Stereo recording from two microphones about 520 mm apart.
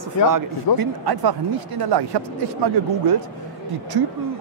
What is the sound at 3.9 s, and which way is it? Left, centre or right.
Speech, right.